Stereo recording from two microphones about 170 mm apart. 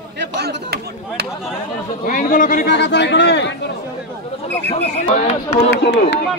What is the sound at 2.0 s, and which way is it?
Speech, 55° left (ahead or behind).